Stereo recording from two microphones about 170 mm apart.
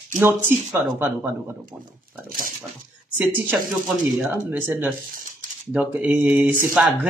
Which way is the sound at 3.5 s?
10° right (ahead or behind).